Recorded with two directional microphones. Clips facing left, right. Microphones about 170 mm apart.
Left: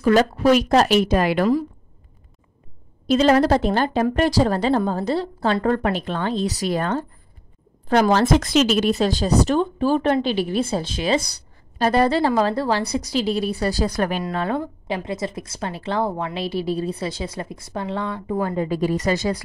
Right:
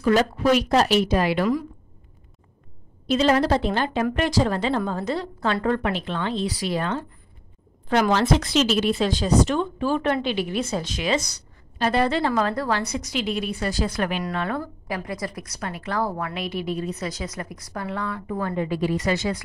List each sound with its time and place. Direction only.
0.0 s a woman's voice: 40° left (ahead or behind)
3.1 s a woman's voice: 40° left (ahead or behind); by 18.5 s 25° left (ahead or behind)
18.5 s a woman's voice: 40° left (ahead or behind)